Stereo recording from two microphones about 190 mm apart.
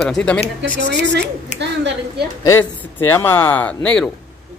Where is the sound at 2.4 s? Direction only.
10° left (ahead or behind).